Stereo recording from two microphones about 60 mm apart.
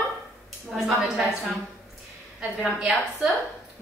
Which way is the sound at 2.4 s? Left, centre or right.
Centre.